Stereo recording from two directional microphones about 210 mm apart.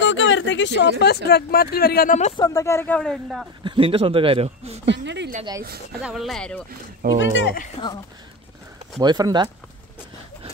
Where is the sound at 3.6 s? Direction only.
25° right (ahead or behind).